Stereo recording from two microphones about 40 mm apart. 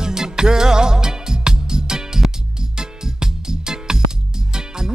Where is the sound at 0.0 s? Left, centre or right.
Centre.